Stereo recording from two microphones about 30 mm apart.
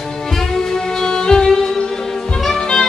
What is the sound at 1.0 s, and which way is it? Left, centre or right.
Music, left.